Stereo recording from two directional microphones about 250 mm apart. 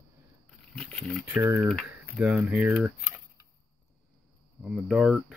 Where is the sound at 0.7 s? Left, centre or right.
Centre.